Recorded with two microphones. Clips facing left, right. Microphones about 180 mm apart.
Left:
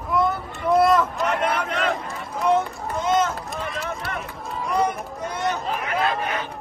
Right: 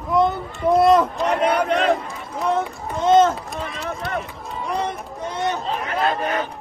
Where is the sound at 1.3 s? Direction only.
35° right (ahead or behind).